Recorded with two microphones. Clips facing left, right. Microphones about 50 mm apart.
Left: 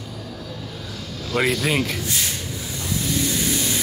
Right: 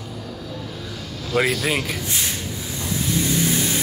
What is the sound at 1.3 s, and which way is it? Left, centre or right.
Speech, centre.